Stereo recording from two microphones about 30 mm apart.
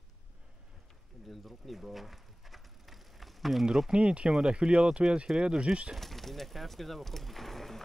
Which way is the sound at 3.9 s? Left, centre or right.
Right.